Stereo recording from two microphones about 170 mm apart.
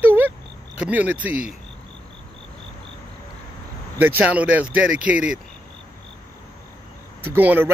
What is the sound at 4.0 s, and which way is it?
Speech, 10° right (ahead or behind).